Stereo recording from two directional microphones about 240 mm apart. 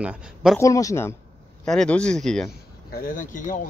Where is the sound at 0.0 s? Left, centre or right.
Centre.